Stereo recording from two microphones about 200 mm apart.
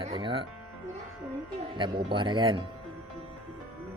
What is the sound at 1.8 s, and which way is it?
Speech, 25° right (ahead or behind).